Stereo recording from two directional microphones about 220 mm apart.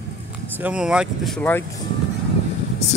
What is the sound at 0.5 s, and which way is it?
Speech, 5° right (ahead or behind).